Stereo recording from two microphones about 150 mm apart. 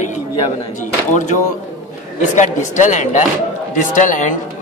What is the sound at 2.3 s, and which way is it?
A man's voice, 55° left (ahead or behind).